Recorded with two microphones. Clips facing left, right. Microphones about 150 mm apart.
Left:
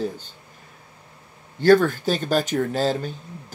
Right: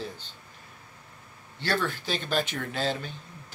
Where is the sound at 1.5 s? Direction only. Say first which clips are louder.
Left 14 dB; 45° left (ahead or behind).